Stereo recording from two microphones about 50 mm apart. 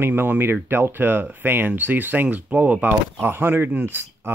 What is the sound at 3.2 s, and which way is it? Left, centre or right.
Speech, right.